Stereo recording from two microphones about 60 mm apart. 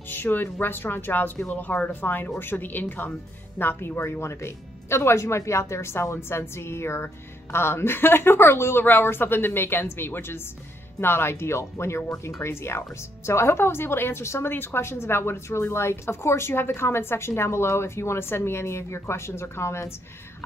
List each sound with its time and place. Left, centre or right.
0.1 s speech: left